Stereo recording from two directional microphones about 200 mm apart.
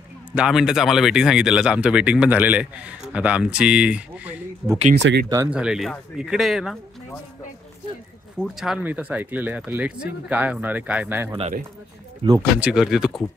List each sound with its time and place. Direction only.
0.4 s speech: 5° right (ahead or behind)
8.4 s speech: centre (ahead or behind)
11.3 s speech: 35° right (ahead or behind)
12.4 s speech: 5° right (ahead or behind)